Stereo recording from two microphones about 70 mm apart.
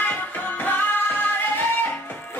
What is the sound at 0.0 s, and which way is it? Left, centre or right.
Music, left.